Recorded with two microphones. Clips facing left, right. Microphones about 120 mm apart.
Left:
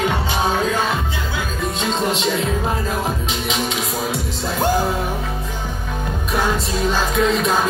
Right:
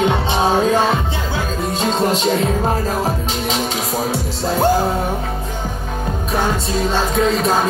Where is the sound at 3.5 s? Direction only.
Centre (ahead or behind).